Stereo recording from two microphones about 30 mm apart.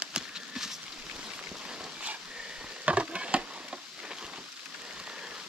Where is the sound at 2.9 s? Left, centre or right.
Right.